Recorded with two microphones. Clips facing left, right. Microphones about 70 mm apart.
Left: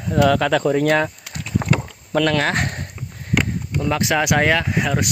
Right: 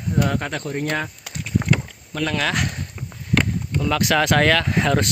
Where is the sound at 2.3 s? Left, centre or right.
Left.